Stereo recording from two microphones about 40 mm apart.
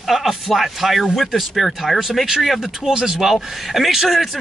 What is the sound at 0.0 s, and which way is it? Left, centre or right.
Speech, centre.